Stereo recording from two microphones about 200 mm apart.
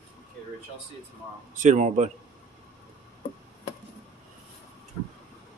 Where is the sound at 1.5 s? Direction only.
40° right (ahead or behind).